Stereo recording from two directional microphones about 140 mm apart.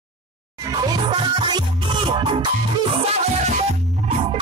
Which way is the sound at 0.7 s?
35° right (ahead or behind).